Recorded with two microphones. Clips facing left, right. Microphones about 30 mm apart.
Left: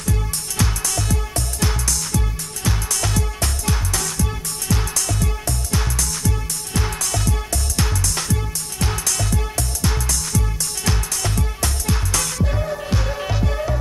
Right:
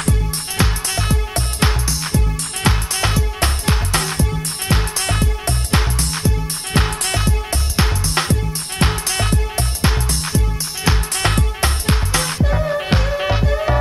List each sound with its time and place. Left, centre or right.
0.6 s music: right
7.2 s music: right
11.1 s music: right